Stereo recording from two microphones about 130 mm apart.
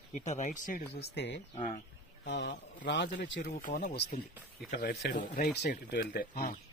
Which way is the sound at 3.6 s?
85° left.